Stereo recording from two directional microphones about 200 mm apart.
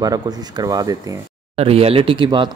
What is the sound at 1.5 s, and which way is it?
Speech, 30° right (ahead or behind).